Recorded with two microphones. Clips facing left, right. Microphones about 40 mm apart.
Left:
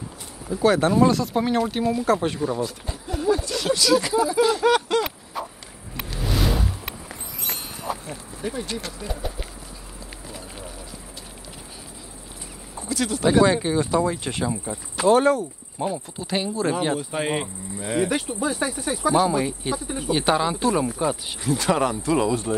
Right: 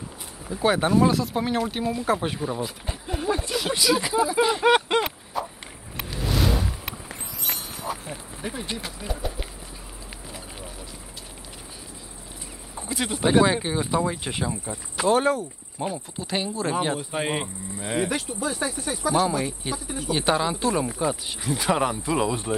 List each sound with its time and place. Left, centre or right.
0.6 s speech: centre
3.7 s speech: centre
5.4 s a sound: centre
7.5 s clip-clop: right
8.1 s speech: centre
10.2 s a sound: centre
12.8 s speech: right; by 18.1 s centre
18.1 s speech: centre